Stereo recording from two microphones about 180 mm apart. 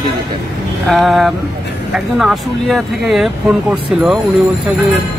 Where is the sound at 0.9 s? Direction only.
Centre (ahead or behind).